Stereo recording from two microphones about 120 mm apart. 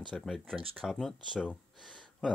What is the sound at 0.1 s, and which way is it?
Speech, 5° left (ahead or behind).